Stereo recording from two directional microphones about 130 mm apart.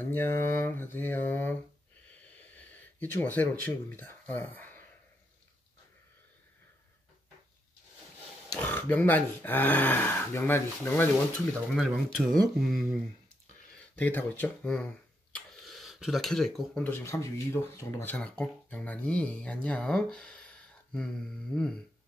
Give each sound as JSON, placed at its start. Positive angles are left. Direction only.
{"t": 0.0, "sound": "speech", "side_deg": 15}
{"t": 2.3, "sound": "gasp", "side_deg": 10}
{"t": 8.5, "sound": "speech", "side_deg": 15}
{"t": 11.7, "sound": "speech", "side_deg": 0}
{"t": 13.9, "sound": "speech", "side_deg": 10}
{"t": 15.3, "sound": "a sound", "side_deg": 0}
{"t": 16.9, "sound": "speech", "side_deg": 25}